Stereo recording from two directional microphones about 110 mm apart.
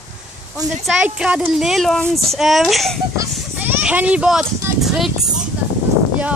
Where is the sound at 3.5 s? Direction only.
15° right (ahead or behind).